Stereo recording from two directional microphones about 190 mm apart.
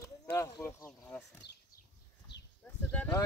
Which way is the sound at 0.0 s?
15° left (ahead or behind).